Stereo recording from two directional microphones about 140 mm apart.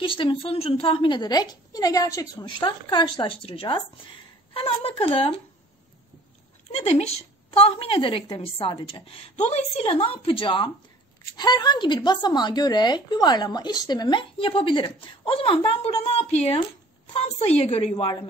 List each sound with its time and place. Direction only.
0.0 s speech: 40° left (ahead or behind)
6.7 s a woman's voice: 45° left (ahead or behind)